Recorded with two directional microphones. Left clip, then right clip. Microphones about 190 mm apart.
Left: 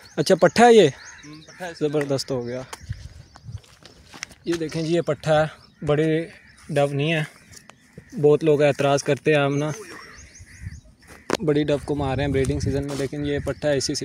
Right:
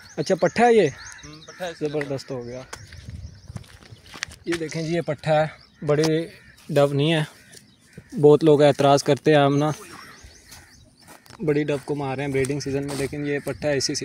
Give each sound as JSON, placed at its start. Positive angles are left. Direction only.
{"t": 0.1, "sound": "speech", "side_deg": 30}
{"t": 1.3, "sound": "a sound", "side_deg": -15}
{"t": 1.8, "sound": "speech", "side_deg": 35}
{"t": 4.1, "sound": "a sound", "side_deg": -10}
{"t": 4.6, "sound": "speech", "side_deg": 20}
{"t": 5.9, "sound": "speech", "side_deg": 0}
{"t": 6.7, "sound": "speech", "side_deg": -20}
{"t": 11.4, "sound": "speech", "side_deg": 15}
{"t": 12.4, "sound": "speech", "side_deg": 5}